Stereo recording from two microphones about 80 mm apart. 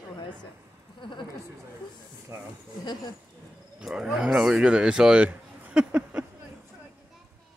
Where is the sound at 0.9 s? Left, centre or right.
Left.